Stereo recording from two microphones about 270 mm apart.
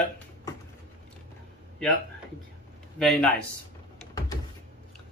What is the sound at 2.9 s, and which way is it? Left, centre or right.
Speech, centre.